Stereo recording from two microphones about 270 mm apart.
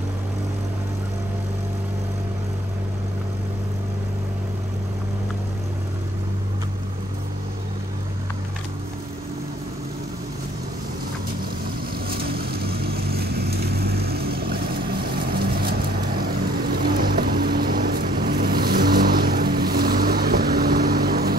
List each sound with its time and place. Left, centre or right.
12.1 s vehicle: right